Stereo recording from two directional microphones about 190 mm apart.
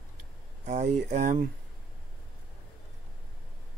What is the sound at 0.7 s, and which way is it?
Speech, 40° right (ahead or behind).